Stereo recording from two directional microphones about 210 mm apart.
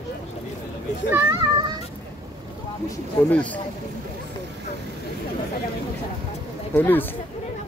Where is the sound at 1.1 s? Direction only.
15° right (ahead or behind).